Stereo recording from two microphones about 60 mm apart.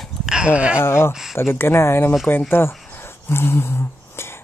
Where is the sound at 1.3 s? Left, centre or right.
Left.